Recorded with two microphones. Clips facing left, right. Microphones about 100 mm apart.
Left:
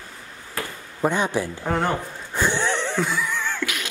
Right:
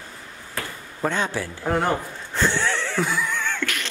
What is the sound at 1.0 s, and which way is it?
Speech, 15° left (ahead or behind).